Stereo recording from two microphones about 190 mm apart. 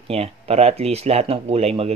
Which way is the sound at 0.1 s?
35° right (ahead or behind).